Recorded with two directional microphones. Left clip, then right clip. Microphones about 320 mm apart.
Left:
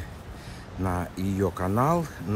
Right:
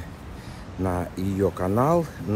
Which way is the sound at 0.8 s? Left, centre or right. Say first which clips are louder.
Right 3 dB; centre.